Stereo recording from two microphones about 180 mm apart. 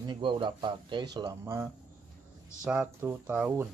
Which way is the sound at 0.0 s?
25° right (ahead or behind).